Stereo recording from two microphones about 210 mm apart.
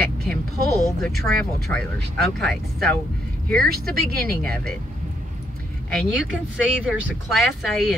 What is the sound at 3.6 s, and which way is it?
Speech, 45° right (ahead or behind).